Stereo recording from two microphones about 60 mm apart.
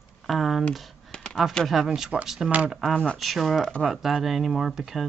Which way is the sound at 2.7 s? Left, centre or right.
Centre.